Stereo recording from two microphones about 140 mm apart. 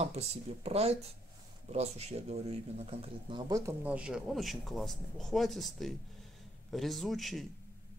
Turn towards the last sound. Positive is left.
turn(degrees=0)  # may be behind; listen again after turning